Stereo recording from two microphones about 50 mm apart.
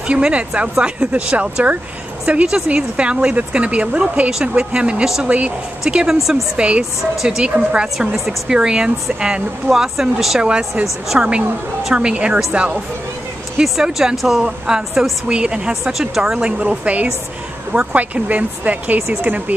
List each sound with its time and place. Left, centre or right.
0.0 s speech: right
6.0 s speech: centre
6.5 s speech: right
6.8 s speech: centre
13.6 s speech: centre
15.7 s speech: centre
16.2 s speech: centre